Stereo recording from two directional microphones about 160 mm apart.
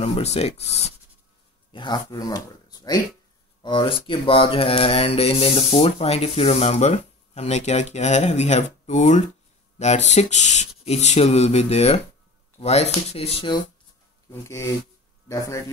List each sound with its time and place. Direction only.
0.0 s speech: 40° left (ahead or behind)
1.7 s speech: 30° left (ahead or behind)
14.3 s a man's voice: 15° left (ahead or behind)